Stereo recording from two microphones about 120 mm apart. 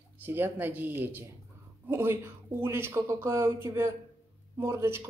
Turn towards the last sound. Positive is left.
turn(degrees=-20)  # may be behind; listen again after turning